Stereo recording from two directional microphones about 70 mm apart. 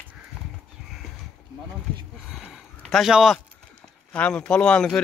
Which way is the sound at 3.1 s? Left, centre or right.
Centre.